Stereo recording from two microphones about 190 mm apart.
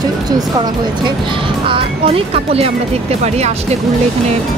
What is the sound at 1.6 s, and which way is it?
Speech, 30° right (ahead or behind).